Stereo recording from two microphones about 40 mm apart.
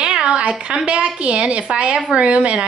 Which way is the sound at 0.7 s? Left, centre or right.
Right.